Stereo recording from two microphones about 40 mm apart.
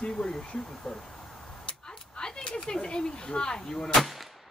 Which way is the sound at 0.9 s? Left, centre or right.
Centre.